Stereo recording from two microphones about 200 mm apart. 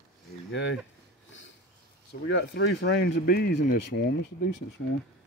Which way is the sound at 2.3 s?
60° left (ahead or behind).